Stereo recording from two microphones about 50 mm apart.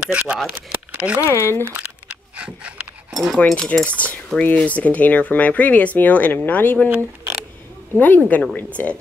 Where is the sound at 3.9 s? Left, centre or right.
Left.